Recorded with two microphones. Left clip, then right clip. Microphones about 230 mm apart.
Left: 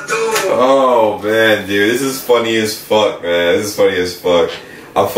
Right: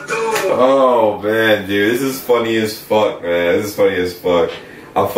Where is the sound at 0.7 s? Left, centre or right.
Right.